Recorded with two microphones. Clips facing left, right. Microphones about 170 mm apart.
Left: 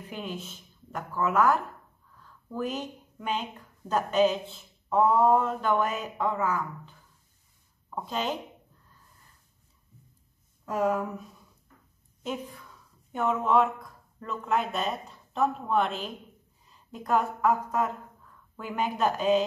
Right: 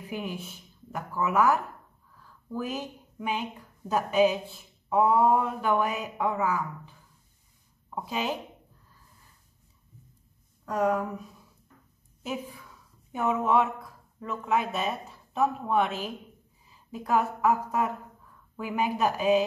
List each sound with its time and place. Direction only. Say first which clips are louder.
0.1 s a woman's voice: right 2 dB; 10° right (ahead or behind)
10.6 s a woman's voice: right 1 dB; 5° left (ahead or behind)
12.2 s a woman's voice: even; 5° right (ahead or behind)